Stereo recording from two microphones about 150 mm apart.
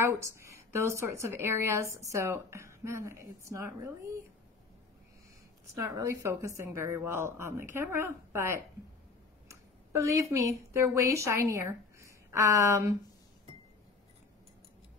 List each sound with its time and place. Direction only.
0.0 s speech: 20° right (ahead or behind)
5.8 s speech: 20° right (ahead or behind)
9.5 s a sound: 20° right (ahead or behind)
10.3 s a woman's voice: 20° right (ahead or behind)